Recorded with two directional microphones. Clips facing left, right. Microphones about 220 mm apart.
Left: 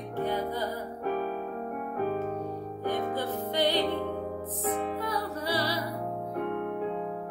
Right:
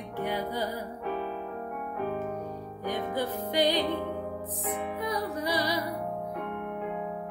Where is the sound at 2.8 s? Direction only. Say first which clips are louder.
Even; 15° right (ahead or behind).